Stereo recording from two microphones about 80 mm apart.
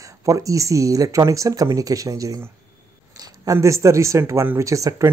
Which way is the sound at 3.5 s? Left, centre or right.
Right.